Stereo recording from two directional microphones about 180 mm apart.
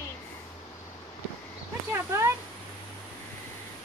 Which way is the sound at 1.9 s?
15° right (ahead or behind).